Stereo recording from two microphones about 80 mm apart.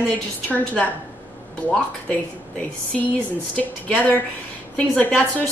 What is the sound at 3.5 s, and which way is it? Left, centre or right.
A woman's voice, centre.